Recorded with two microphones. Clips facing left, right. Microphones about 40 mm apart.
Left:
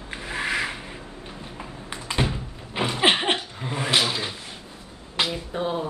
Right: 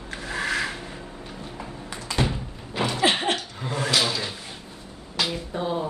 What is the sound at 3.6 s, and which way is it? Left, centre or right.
Speech, centre.